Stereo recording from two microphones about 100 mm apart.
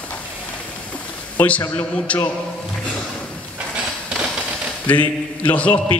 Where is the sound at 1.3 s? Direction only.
15° left (ahead or behind).